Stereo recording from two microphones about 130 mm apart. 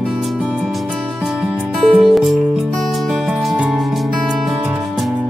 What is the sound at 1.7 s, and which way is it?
Music, centre (ahead or behind).